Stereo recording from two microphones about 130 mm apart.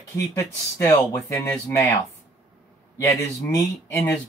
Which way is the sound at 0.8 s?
25° left (ahead or behind).